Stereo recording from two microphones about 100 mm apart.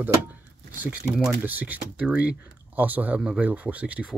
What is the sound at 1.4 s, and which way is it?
Speech, 15° right (ahead or behind).